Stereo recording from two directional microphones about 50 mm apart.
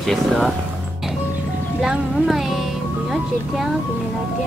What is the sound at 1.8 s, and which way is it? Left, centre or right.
Speech, centre.